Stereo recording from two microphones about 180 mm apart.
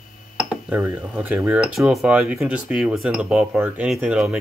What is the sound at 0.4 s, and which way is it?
Speech, 5° right (ahead or behind).